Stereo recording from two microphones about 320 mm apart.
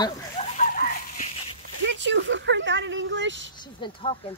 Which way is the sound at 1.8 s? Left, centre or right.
Right.